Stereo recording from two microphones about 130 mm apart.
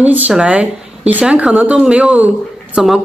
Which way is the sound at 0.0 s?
10° right (ahead or behind).